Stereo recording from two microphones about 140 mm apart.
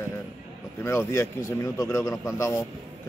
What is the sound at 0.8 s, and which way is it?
A man's voice, 20° left (ahead or behind).